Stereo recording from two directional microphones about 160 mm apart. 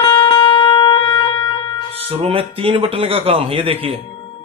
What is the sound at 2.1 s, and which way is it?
Speech, 35° right (ahead or behind).